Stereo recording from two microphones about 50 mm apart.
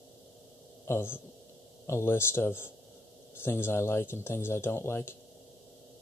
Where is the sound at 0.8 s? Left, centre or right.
Left.